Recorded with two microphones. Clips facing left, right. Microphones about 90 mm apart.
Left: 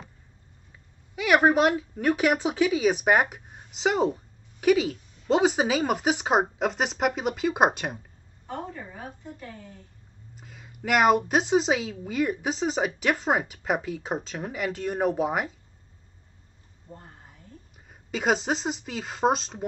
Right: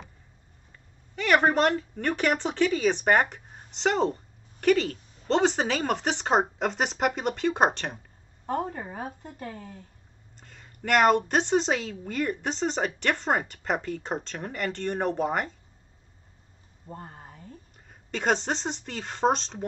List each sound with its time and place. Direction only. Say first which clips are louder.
1.1 s speech: left 2 dB; 5° left (ahead or behind)
8.5 s a woman's voice: right 6 dB; 45° right (ahead or behind)
10.3 s a woman's voice: left 3 dB; 5° left (ahead or behind)
16.9 s speech: right 5 dB; 55° right (ahead or behind)
17.7 s a woman's voice: left 2 dB; 5° left (ahead or behind)